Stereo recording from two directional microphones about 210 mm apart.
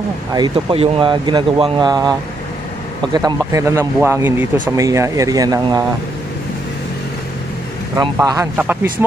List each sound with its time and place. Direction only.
0.3 s speech: 20° right (ahead or behind)
7.9 s speech: 15° right (ahead or behind)